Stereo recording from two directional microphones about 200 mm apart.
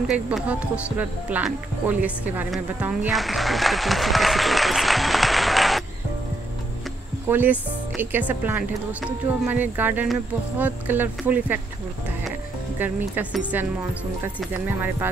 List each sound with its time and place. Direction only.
0.1 s speech: 5° right (ahead or behind)
7.2 s speech: 10° right (ahead or behind)